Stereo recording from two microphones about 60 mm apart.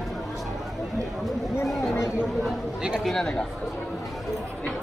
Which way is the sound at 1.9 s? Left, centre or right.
Left.